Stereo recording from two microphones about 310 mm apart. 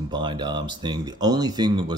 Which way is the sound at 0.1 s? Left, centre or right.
Centre.